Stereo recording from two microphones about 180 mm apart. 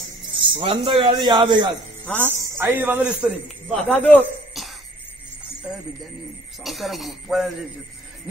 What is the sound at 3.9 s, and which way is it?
Speech, 10° left (ahead or behind).